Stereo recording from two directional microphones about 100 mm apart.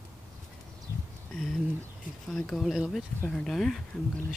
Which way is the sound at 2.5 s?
Centre (ahead or behind).